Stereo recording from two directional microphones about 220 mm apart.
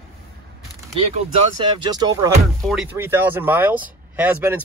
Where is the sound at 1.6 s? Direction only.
20° right (ahead or behind).